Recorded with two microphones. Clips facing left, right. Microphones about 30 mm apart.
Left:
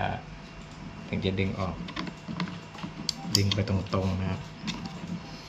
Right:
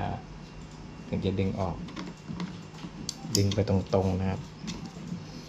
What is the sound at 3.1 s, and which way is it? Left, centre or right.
Cutlery, left.